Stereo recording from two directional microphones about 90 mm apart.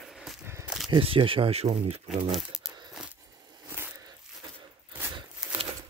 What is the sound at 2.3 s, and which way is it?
Crumpling, 5° right (ahead or behind).